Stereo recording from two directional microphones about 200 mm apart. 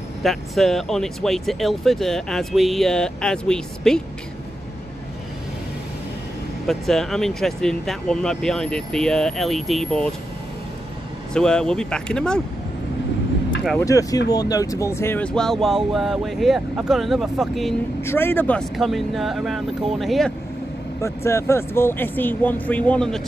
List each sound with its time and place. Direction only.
0.2 s speech: centre (ahead or behind)
6.7 s speech: centre (ahead or behind)
11.3 s speech: 5° left (ahead or behind)
13.7 s speech: 15° left (ahead or behind); by 17.7 s centre (ahead or behind)
18.0 s speech: 10° left (ahead or behind)
21.0 s speech: 15° left (ahead or behind)